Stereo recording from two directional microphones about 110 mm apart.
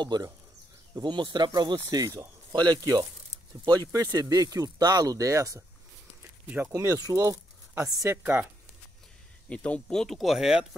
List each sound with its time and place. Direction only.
0.0 s speech: 40° right (ahead or behind)
6.7 s speech: 25° right (ahead or behind)
9.5 s speech: 10° left (ahead or behind); by 10.8 s 5° right (ahead or behind)